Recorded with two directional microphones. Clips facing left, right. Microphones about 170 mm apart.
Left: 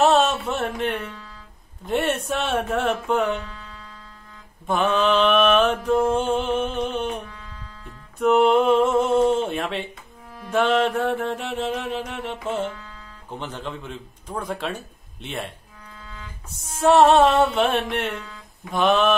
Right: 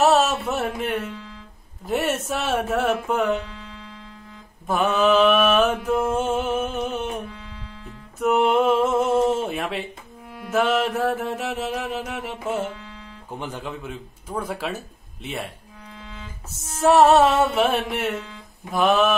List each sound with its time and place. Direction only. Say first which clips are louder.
0.0 s music: even; 5° right (ahead or behind)
1.9 s mantra: left 1 dB; 5° right (ahead or behind)
4.6 s a man's voice: right 1 dB; 5° right (ahead or behind)
6.1 s a sound: left 1 dB; 5° right (ahead or behind)
8.2 s a sound: left 2 dB; centre (ahead or behind)
10.5 s mantra: left 1 dB; 5° right (ahead or behind)
13.3 s a man's voice: even; 10° right (ahead or behind)
15.2 s mantra: even; 5° right (ahead or behind)
16.8 s mantra: even; 5° right (ahead or behind)